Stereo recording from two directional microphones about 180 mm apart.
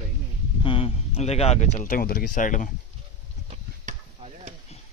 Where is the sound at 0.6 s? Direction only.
30° left (ahead or behind).